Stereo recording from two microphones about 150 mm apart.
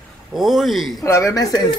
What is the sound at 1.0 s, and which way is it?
Speech, 20° left (ahead or behind).